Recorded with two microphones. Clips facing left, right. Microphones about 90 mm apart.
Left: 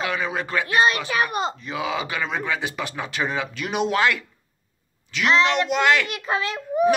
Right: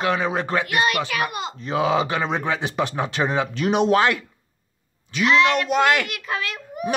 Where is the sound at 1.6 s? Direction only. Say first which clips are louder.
Right 6 dB; 35° right (ahead or behind).